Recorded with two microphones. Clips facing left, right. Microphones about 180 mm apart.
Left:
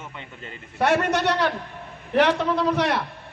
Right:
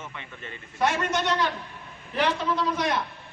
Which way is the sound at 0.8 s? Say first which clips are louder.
Left 5 dB; 65° left (ahead or behind).